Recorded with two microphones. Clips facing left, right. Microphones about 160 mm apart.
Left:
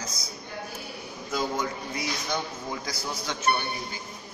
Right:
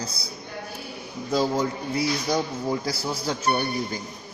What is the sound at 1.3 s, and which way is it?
A man's voice, 30° right (ahead or behind).